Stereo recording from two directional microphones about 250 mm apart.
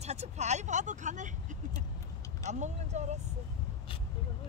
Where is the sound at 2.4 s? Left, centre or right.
Right.